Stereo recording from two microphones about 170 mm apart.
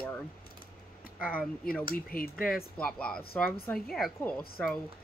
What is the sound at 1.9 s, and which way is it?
Speech, 60° left (ahead or behind).